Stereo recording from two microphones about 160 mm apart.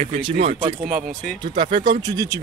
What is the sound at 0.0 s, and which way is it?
Speech, 40° right (ahead or behind).